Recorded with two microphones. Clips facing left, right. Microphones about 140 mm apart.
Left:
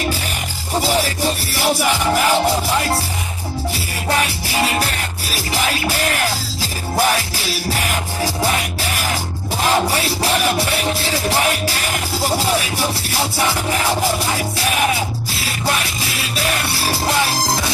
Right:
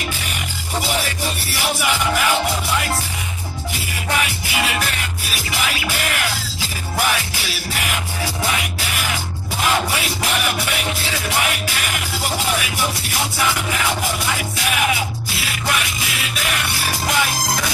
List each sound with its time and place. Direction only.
0.7 s music: 35° left (ahead or behind)
4.1 s music: 35° left (ahead or behind)